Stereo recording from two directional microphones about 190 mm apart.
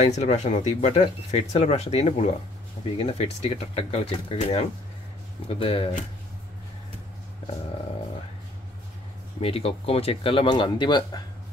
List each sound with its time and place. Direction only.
0.0 s speech: 35° left (ahead or behind)
9.4 s speech: 30° left (ahead or behind)